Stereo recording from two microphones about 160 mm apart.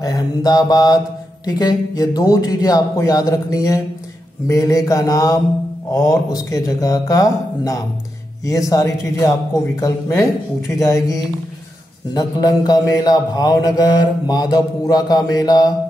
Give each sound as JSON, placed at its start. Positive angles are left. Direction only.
{"t": 0.0, "sound": "mantra", "side_deg": 20}